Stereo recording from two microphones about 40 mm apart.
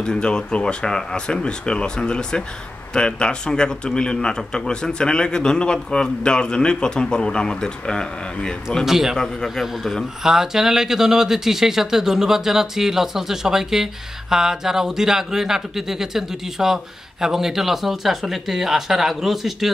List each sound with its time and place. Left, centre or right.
0.0 s a man's voice: left
8.8 s speech: centre
9.1 s a man's voice: centre
10.2 s speech: centre